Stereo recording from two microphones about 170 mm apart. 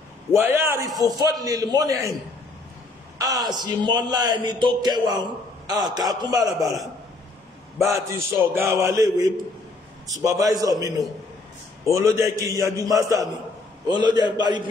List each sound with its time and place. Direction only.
0.3 s a man's voice: 15° right (ahead or behind)
3.2 s a man's voice: 20° right (ahead or behind)
8.1 s a man's voice: 15° right (ahead or behind)
11.9 s a man's voice: 20° right (ahead or behind)